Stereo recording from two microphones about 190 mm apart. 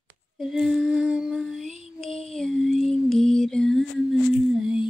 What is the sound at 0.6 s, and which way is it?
Humming, centre (ahead or behind).